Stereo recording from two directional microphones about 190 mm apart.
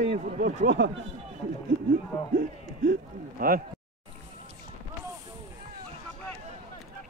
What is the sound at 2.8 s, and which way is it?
Speech, 55° right (ahead or behind).